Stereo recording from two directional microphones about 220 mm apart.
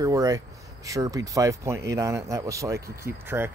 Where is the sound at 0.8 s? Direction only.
15° right (ahead or behind).